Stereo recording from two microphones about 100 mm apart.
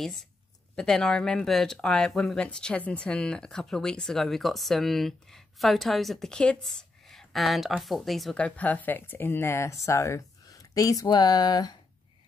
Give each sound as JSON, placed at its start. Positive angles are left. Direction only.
{"t": 0.7, "sound": "speech", "side_deg": 5}
{"t": 8.4, "sound": "speech", "side_deg": 15}